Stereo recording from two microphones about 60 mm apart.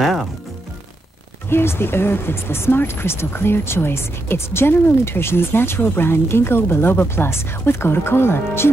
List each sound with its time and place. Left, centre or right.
1.5 s speech: left